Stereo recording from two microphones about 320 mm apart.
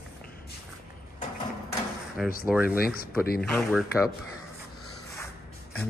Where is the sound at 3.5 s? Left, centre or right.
Centre.